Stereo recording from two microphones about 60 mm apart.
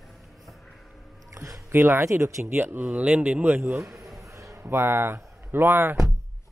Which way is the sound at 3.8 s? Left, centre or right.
Centre.